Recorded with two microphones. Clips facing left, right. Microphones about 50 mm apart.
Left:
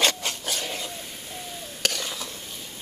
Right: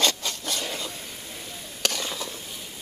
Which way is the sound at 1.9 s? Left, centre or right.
Centre.